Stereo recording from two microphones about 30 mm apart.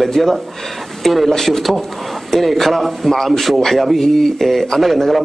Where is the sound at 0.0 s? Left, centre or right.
Centre.